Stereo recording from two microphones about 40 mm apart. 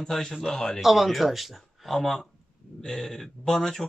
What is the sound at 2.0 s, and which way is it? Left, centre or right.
Speech, centre.